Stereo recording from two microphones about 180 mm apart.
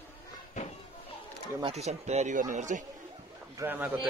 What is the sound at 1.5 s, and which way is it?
A man's voice, 35° right (ahead or behind).